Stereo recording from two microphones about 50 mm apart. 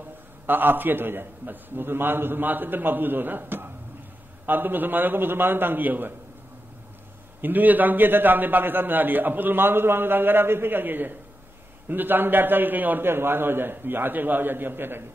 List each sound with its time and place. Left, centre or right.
0.5 s a man's voice: right
7.4 s a man's voice: right